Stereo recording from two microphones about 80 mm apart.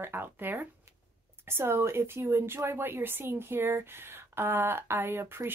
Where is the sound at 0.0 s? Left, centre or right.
Right.